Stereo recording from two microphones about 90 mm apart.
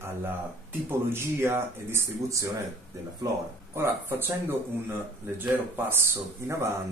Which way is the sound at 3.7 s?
30° right (ahead or behind).